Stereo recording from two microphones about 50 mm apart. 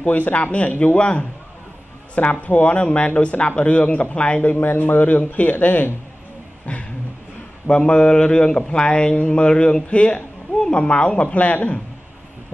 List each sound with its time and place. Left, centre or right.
0.0 s a man's voice: left
2.4 s a man's voice: left
4.4 s a man's voice: left
6.7 s a sound: left
7.6 s a man's voice: centre